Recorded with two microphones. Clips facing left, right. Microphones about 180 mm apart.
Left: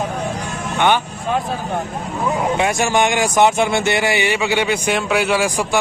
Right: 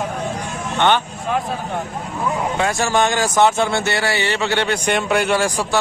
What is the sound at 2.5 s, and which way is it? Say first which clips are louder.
Speech: left 1 dB; 15° left (ahead or behind).